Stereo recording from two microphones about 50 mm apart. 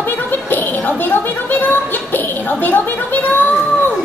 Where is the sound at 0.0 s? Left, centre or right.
Left.